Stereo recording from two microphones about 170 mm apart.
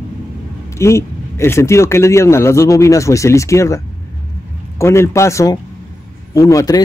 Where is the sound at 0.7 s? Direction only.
15° left (ahead or behind).